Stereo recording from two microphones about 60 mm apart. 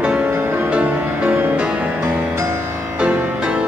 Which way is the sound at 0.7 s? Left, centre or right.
Right.